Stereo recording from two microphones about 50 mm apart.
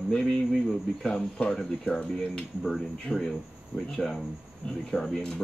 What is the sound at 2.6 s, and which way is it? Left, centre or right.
Speech, centre.